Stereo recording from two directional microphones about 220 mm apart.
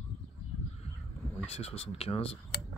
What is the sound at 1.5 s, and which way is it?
Speech, 25° left (ahead or behind).